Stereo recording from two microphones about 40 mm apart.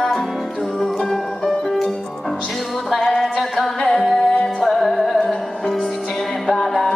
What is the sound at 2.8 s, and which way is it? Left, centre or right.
Music, centre.